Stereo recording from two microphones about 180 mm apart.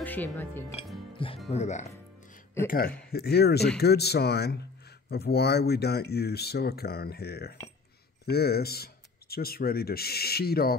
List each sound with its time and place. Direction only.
0.0 s speech: 10° left (ahead or behind)
1.1 s music: 30° left (ahead or behind)
1.5 s speech: 40° left (ahead or behind)
3.1 s speech: 60° left (ahead or behind)